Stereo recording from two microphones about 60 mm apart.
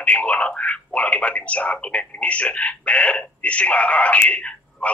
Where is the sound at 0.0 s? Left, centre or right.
Left.